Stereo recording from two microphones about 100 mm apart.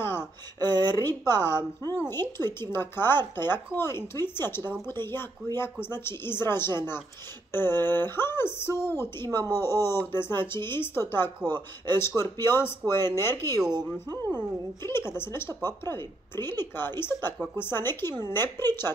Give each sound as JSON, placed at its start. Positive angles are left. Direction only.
{"t": 0.0, "sound": "speech", "side_deg": 25}
{"t": 0.7, "sound": "speech", "side_deg": -45}
{"t": 0.9, "sound": "speech", "side_deg": 25}
{"t": 14.8, "sound": "speech", "side_deg": 25}